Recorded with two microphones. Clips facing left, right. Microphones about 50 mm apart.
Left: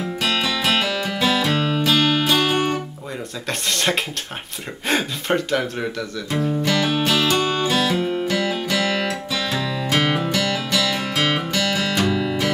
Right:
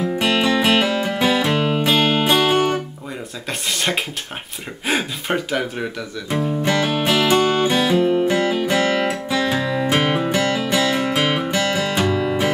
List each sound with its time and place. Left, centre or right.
0.2 s music: right
3.4 s speech: centre
6.6 s music: right